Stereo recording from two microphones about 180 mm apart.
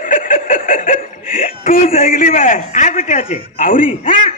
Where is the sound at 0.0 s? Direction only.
50° left (ahead or behind).